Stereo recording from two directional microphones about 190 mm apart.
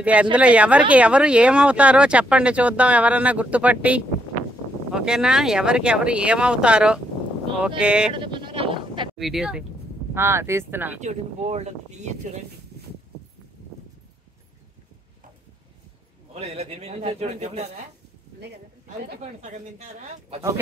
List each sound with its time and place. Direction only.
0.0 s speech: 5° right (ahead or behind)
8.1 s sheep: 25° right (ahead or behind)
9.1 s speech: centre (ahead or behind)
10.1 s speech: 15° right (ahead or behind)
11.0 s a man's voice: 35° right (ahead or behind)
16.3 s a man's voice: 30° right (ahead or behind)
19.4 s a man's voice: 40° right (ahead or behind)